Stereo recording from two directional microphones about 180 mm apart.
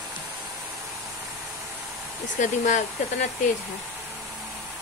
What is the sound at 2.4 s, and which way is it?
Speech, 45° left (ahead or behind).